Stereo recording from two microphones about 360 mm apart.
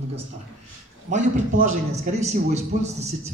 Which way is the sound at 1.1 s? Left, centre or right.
Right.